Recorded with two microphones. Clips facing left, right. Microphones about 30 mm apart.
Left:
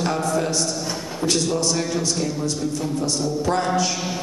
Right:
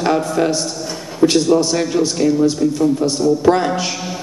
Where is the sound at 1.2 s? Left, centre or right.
Right.